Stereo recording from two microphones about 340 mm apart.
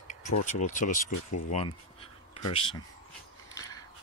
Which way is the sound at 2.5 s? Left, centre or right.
Centre.